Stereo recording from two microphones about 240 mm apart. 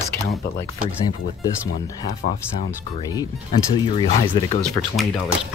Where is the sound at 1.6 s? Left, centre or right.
Centre.